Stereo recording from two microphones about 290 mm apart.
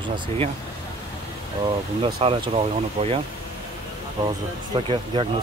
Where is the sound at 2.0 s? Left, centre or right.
Centre.